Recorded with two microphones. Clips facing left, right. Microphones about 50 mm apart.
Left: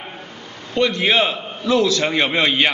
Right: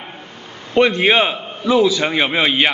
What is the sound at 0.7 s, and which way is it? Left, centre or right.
A man's voice, right.